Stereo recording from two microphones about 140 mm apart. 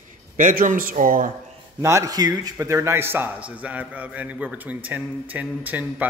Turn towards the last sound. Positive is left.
turn(degrees=-10)  # may be behind; listen again after turning